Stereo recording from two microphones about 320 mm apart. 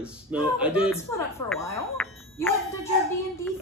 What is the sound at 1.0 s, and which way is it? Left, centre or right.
Speech, centre.